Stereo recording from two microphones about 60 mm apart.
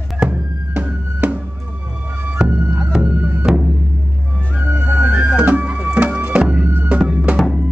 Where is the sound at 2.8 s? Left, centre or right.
Centre.